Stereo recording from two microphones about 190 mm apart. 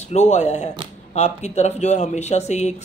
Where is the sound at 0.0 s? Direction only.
35° left (ahead or behind).